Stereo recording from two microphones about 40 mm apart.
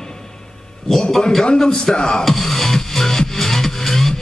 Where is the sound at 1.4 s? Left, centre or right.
Centre.